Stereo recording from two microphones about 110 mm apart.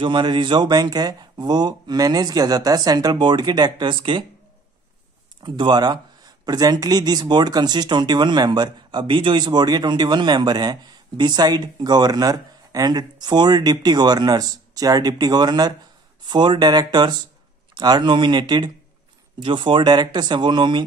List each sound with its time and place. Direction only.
0.0 s speech: 45° right (ahead or behind)
5.4 s speech: 45° right (ahead or behind)